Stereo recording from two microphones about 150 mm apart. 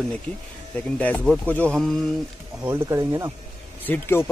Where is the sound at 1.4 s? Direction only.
10° left (ahead or behind).